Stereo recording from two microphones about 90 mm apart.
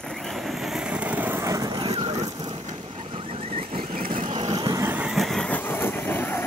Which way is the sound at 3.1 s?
90° right.